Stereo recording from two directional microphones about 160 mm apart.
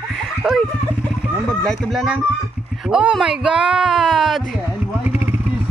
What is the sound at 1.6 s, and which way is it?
Speech, 5° left (ahead or behind).